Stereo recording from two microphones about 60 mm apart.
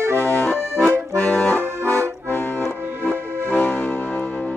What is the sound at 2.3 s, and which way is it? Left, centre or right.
Accordion, left.